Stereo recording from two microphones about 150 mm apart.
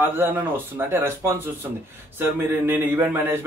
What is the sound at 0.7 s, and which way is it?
Speech, 15° right (ahead or behind).